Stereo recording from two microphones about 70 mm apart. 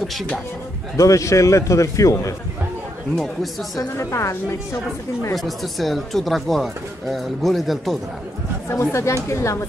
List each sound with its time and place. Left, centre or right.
0.9 s a man's voice: left
3.7 s a man's voice: left
5.3 s speech: centre
8.6 s a man's voice: left